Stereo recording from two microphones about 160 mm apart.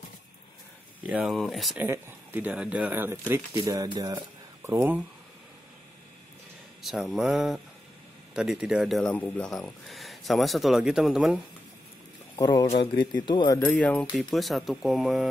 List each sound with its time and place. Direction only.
1.0 s speech: 5° right (ahead or behind)
1.8 s speech: 10° right (ahead or behind)
4.6 s speech: 10° right (ahead or behind)
6.8 s speech: centre (ahead or behind)
12.4 s speech: 25° left (ahead or behind)
12.6 s speech: 35° left (ahead or behind)
13.7 s speech: 10° left (ahead or behind)